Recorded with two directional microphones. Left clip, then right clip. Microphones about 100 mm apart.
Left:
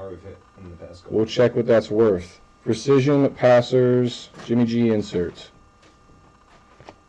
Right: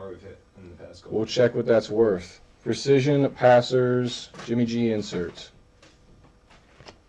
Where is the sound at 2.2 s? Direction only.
20° left (ahead or behind).